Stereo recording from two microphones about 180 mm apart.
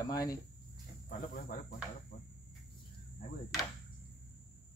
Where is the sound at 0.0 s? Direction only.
20° left (ahead or behind).